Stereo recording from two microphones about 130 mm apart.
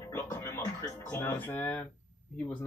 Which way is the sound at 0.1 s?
20° left (ahead or behind).